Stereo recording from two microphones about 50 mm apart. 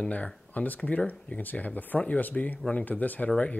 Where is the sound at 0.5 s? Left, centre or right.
Left.